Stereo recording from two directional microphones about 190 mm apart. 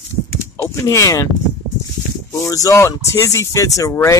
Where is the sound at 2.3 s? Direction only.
15° left (ahead or behind).